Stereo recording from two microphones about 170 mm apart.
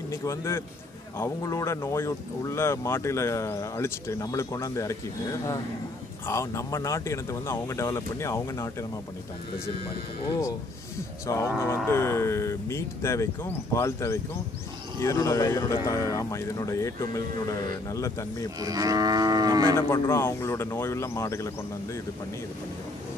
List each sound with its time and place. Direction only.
0.1 s speech: 15° left (ahead or behind)
6.2 s speech: 15° left (ahead or behind)
11.2 s speech: 15° left (ahead or behind)
18.6 s moo: 20° right (ahead or behind)
19.9 s speech: 15° left (ahead or behind)